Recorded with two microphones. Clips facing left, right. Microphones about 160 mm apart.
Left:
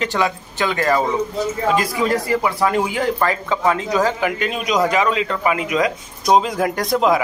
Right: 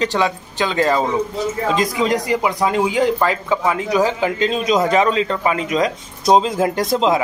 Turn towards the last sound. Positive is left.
turn(degrees=-25)  # may be behind; listen again after turning